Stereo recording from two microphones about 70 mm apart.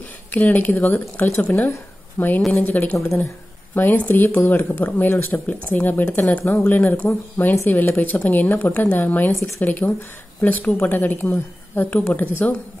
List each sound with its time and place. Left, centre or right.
0.3 s speech: left